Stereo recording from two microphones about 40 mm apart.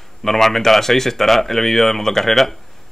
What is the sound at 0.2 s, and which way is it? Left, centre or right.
Speech, centre.